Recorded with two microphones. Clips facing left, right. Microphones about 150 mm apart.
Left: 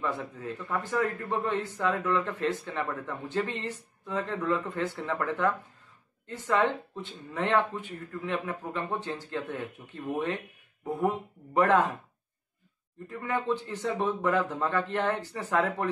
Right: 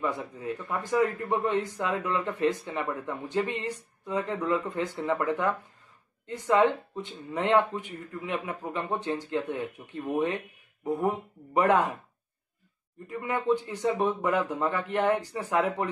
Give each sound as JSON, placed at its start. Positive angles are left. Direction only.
{"t": 0.0, "sound": "a man's voice", "side_deg": -15}
{"t": 13.1, "sound": "a man's voice", "side_deg": -15}